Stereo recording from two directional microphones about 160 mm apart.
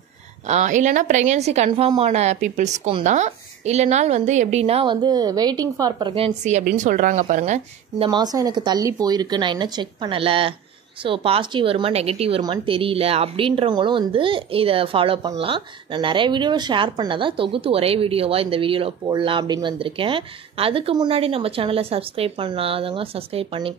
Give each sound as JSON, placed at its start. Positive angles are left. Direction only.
{"t": 0.5, "sound": "a woman's voice", "side_deg": -45}
{"t": 1.7, "sound": "a woman's voice", "side_deg": -35}
{"t": 5.0, "sound": "speech", "side_deg": -25}
{"t": 6.8, "sound": "a woman's voice", "side_deg": -55}
{"t": 8.1, "sound": "a woman's voice", "side_deg": -25}